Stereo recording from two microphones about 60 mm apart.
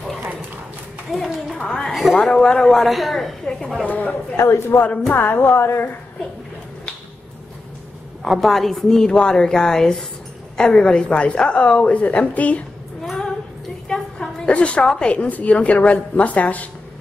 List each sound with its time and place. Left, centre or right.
0.2 s run: right
1.1 s a sound: centre
2.2 s a woman's voice: centre
3.9 s a woman's voice: left
4.4 s a woman's voice: left
8.2 s a woman's voice: centre; by 12.6 s left
13.0 s music: centre
13.8 s a sound: centre
14.5 s a woman's voice: left